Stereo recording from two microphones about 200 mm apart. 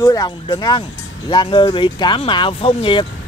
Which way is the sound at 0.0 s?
20° left (ahead or behind).